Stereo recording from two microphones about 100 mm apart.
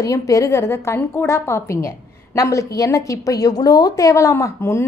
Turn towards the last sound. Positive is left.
turn(degrees=30)  # may be behind; listen again after turning